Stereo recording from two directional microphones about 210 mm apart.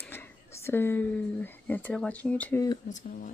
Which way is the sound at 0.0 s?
10° left (ahead or behind).